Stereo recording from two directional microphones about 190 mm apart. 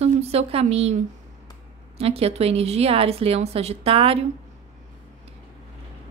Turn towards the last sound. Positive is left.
turn(degrees=-30)  # may be behind; listen again after turning